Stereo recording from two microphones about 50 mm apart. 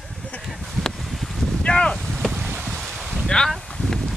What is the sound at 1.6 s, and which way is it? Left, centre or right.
Boat, centre.